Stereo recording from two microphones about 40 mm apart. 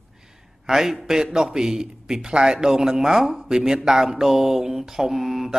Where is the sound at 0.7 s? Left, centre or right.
Centre.